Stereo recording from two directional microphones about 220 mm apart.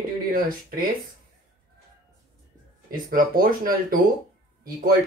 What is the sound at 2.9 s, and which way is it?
Speech, 40° right (ahead or behind).